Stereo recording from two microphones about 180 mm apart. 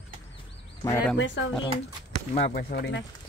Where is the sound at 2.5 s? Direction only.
55° left (ahead or behind).